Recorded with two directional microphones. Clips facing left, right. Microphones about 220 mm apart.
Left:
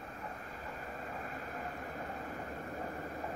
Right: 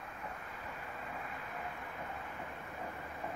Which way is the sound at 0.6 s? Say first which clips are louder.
Left 3 dB; 40° left (ahead or behind).